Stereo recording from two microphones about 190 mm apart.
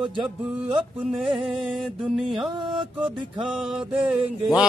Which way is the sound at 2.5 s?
25° right (ahead or behind).